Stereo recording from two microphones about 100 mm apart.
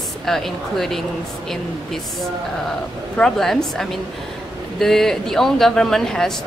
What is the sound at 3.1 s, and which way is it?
Speech, 5° left (ahead or behind).